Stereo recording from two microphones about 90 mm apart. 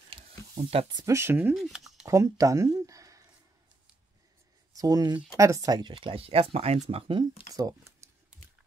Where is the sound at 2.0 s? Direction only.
35° right (ahead or behind).